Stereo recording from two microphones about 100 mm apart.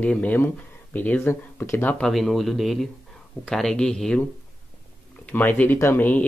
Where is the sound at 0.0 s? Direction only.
15° left (ahead or behind).